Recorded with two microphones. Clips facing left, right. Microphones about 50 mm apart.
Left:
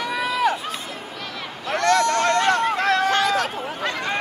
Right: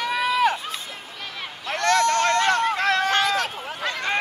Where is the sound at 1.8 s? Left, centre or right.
Right.